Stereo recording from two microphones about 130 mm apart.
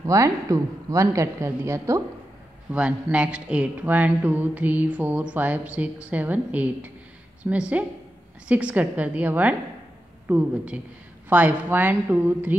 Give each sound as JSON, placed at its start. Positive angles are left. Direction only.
{"t": 0.0, "sound": "a man's voice", "side_deg": -25}
{"t": 2.7, "sound": "speech", "side_deg": -10}